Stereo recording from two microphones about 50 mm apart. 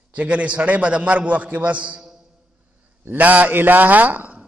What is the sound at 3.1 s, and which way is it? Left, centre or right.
A man's voice, right.